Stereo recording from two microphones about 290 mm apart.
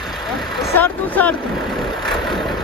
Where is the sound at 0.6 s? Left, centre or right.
Centre.